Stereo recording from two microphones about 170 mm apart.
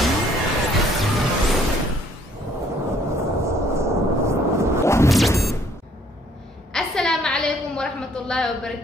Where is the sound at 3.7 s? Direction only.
15° right (ahead or behind).